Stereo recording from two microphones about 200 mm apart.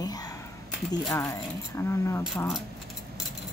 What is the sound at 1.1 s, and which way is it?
Speech, 15° left (ahead or behind).